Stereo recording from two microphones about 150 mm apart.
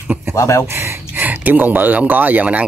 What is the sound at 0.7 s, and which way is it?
Speech, 15° right (ahead or behind).